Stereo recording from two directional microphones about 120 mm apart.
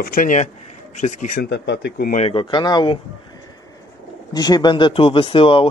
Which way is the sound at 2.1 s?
55° left (ahead or behind).